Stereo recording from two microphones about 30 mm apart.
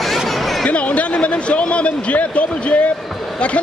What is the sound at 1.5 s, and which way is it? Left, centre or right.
Speech, left.